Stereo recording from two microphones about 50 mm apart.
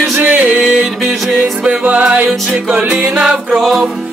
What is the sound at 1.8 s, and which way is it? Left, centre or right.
Music, right.